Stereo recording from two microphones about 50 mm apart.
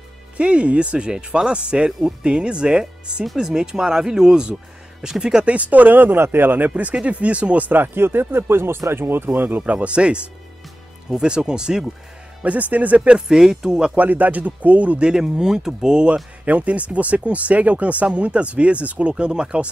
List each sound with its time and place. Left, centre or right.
0.4 s speech: right
1.9 s speech: centre
2.2 s speech: centre
5.4 s speech: right
6.7 s speech: right
7.8 s speech: right
9.6 s speech: right
12.4 s speech: right
13.3 s speech: centre
13.9 s speech: right; by 16.2 s centre
16.4 s speech: right